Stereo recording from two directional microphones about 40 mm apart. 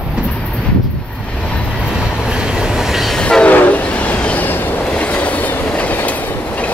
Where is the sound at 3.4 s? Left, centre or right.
Left.